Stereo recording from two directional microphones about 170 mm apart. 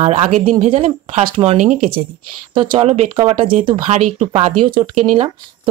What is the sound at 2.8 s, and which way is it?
Speech, 35° right (ahead or behind).